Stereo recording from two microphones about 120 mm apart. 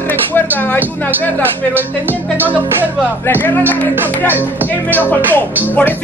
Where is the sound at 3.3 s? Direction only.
15° left (ahead or behind).